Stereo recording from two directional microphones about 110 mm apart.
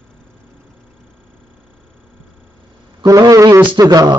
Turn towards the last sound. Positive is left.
turn(degrees=-35)  # may be behind; listen again after turning